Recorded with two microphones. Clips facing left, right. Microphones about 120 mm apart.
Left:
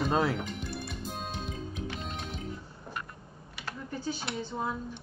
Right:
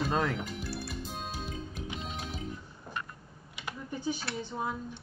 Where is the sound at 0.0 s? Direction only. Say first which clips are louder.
Left 2 dB; 5° left (ahead or behind).